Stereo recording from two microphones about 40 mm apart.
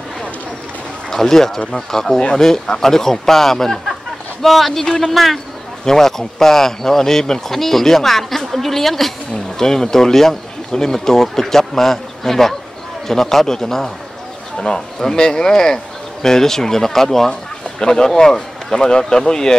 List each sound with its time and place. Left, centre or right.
1.1 s a man's voice: centre
4.8 s speech: centre
5.1 s a man's voice: centre